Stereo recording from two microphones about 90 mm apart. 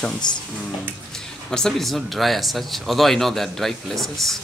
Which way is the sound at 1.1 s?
5° left (ahead or behind).